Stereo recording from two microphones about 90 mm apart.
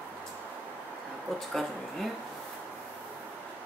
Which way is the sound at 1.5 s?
5° left (ahead or behind).